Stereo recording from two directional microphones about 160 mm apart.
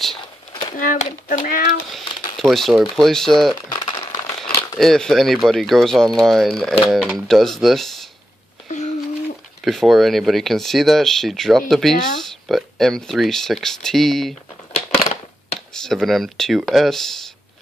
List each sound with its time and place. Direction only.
0.5 s a sound: 25° left (ahead or behind)
0.7 s a child's voice: 55° left (ahead or behind)
2.4 s speech: centre (ahead or behind)
3.6 s speech: 30° left (ahead or behind)
4.7 s speech: centre (ahead or behind)
9.7 s speech: centre (ahead or behind)
14.7 s crushing: 40° left (ahead or behind)
15.7 s speech: 5° left (ahead or behind)